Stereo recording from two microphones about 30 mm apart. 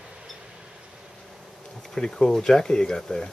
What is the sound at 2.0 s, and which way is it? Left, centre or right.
Speech, left.